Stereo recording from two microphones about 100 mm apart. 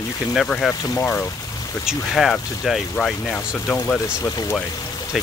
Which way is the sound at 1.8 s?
Centre (ahead or behind).